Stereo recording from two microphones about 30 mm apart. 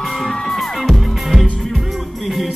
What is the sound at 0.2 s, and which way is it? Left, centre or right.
Music, centre.